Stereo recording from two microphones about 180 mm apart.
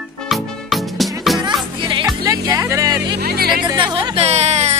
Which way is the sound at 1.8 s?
25° right (ahead or behind).